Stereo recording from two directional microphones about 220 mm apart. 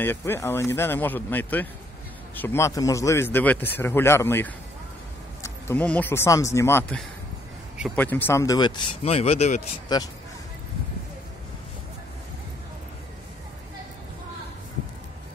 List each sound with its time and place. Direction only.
0.0 s a man's voice: 10° left (ahead or behind); by 9.6 s 30° left (ahead or behind)
9.9 s a man's voice: 20° left (ahead or behind)